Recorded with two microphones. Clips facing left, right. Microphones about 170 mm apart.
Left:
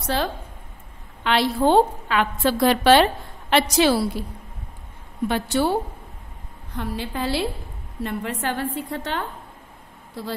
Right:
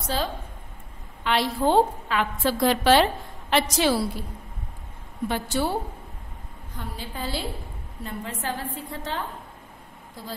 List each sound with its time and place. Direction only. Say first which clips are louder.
0.0 s a woman's voice: left 3 dB; 65° left (ahead or behind)
5.3 s a woman's voice: left 4 dB; 70° left (ahead or behind)
6.7 s a woman's voice: left 8 dB; 75° left (ahead or behind)